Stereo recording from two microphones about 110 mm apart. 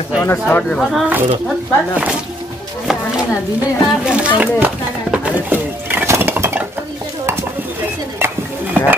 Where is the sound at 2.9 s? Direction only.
5° right (ahead or behind).